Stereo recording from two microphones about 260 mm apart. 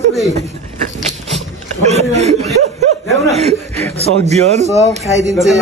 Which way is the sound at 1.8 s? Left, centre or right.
Right.